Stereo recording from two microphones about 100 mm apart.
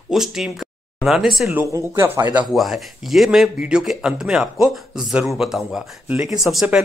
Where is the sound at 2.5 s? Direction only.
Centre (ahead or behind).